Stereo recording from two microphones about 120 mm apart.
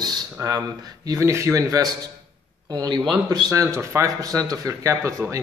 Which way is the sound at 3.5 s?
25° right (ahead or behind).